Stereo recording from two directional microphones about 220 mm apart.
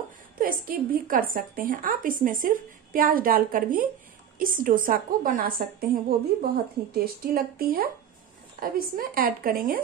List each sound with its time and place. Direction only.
0.4 s a woman's voice: 40° right (ahead or behind)